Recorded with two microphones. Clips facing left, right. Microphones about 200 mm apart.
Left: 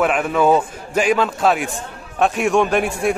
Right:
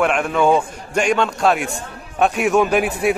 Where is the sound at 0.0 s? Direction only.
5° left (ahead or behind).